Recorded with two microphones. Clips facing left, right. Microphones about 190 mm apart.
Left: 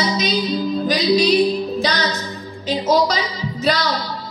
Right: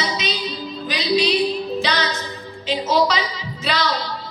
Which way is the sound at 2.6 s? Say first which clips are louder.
Left 2 dB; 40° left (ahead or behind).